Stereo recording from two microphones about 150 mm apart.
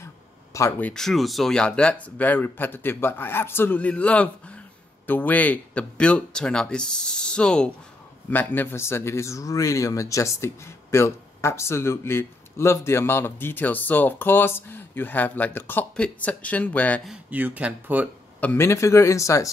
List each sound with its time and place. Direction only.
0.0 s speech: 20° left (ahead or behind)
17.0 s speech: 5° right (ahead or behind)
18.4 s speech: 15° left (ahead or behind)